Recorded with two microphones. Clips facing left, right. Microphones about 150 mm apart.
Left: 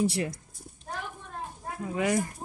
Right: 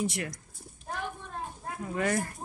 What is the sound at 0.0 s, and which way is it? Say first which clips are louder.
Speech: left 5 dB; 30° left (ahead or behind).